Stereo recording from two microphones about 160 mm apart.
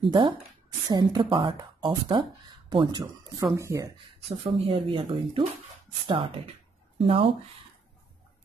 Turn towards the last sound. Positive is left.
turn(degrees=-35)  # may be behind; listen again after turning